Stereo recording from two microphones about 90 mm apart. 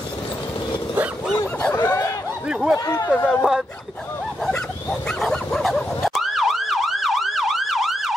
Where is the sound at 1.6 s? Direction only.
15° left (ahead or behind).